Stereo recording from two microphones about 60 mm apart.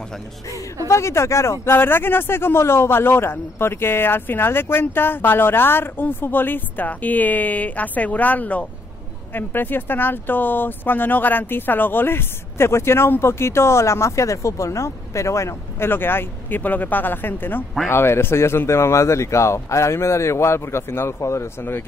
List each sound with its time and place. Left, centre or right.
0.8 s speech: left
1.8 s a man's voice: left
15.9 s a man's voice: left